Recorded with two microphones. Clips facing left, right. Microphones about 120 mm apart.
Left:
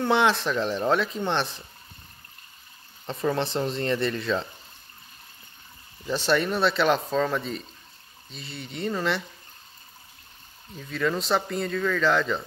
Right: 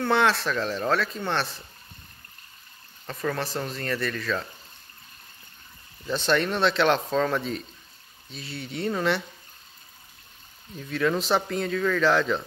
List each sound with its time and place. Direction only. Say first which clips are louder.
0.0 s speech: left 1 dB; 20° left (ahead or behind)
3.1 s speech: left 3 dB; 25° left (ahead or behind)
6.0 s speech: even; 10° left (ahead or behind)
10.8 s speech: right 2 dB; centre (ahead or behind)